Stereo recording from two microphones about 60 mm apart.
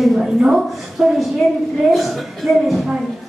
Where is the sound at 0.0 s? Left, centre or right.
Centre.